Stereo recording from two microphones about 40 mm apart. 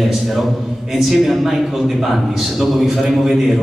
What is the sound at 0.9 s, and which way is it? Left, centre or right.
Speech, centre.